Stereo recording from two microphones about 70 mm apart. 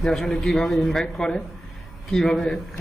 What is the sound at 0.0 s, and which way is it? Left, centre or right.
A man's voice, centre.